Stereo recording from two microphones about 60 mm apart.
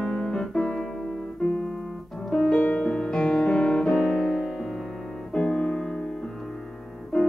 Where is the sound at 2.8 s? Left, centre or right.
Centre.